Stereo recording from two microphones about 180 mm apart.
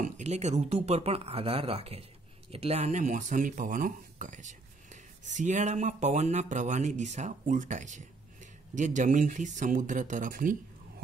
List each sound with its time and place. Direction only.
0.0 s speech: 40° right (ahead or behind)